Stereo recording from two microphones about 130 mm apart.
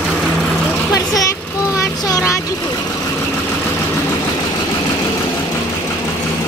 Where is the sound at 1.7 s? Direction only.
25° left (ahead or behind).